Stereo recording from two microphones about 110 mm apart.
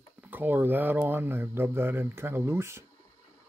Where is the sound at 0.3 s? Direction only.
15° right (ahead or behind).